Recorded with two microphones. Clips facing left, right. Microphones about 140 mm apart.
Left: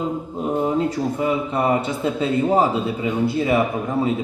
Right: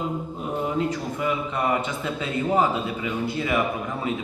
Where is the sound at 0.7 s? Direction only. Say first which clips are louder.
Left 5 dB; 30° left (ahead or behind).